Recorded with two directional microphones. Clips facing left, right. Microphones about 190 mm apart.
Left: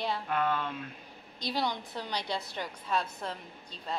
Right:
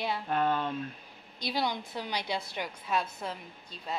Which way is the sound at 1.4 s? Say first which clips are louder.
Right 1 dB; 10° right (ahead or behind).